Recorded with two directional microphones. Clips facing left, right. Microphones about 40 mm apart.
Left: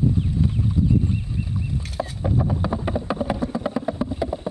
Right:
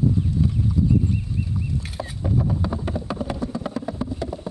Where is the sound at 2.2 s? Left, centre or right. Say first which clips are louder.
Even; centre.